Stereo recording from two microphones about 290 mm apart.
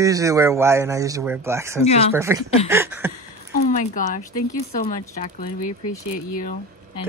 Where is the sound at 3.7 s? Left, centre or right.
Left.